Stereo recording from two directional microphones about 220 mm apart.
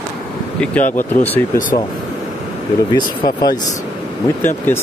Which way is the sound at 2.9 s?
20° left (ahead or behind).